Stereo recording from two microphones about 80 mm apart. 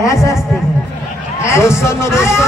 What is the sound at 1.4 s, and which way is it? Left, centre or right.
A man's voice, left.